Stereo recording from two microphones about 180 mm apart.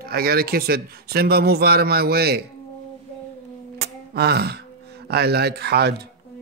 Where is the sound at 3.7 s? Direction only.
65° right (ahead or behind).